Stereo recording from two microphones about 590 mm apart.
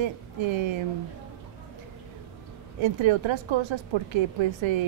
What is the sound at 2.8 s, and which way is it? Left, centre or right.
Speech, right.